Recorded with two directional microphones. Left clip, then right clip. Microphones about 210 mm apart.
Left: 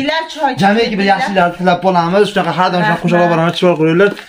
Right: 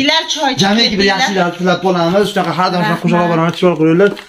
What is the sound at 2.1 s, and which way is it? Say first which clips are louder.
A man's voice: left 1 dB; 40° left (ahead or behind).